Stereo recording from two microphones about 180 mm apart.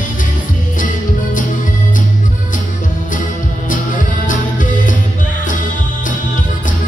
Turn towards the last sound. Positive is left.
turn(degrees=45)  # may be behind; listen again after turning